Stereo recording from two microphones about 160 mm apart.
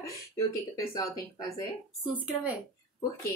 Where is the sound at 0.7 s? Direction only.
20° left (ahead or behind).